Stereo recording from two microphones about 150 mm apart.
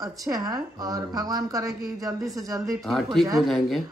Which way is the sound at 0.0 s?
20° right (ahead or behind).